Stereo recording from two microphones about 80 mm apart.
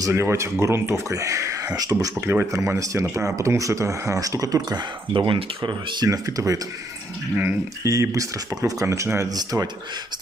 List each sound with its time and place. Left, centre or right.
0.1 s speech: right
1.7 s speech: right
2.2 s speech: right
4.6 s speech: right
6.0 s speech: right
7.8 s speech: right
9.4 s speech: right